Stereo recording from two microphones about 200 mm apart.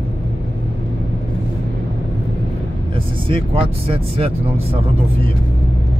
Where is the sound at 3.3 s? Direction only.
25° right (ahead or behind).